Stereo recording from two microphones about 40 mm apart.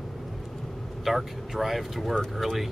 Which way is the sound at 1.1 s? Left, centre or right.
Centre.